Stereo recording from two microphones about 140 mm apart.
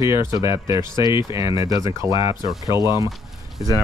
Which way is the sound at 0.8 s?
30° left (ahead or behind).